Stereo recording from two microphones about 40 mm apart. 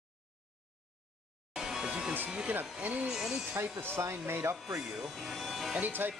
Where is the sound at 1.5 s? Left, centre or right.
Centre.